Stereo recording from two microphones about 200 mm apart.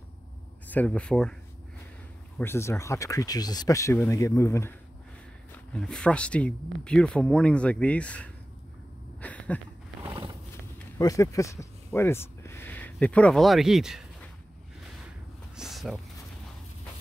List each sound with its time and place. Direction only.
0.7 s speech: 10° left (ahead or behind)
2.3 s speech: 10° left (ahead or behind)
9.2 s a sound: 5° left (ahead or behind)
10.0 s roaring cats: 25° right (ahead or behind)
11.0 s speech: 15° left (ahead or behind); by 14.0 s centre (ahead or behind)
15.5 s a sound: centre (ahead or behind)